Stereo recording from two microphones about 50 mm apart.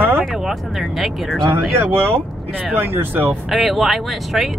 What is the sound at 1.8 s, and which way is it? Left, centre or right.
Speech, right.